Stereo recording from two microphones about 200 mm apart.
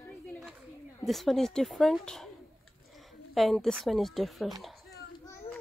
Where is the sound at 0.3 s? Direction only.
Centre (ahead or behind).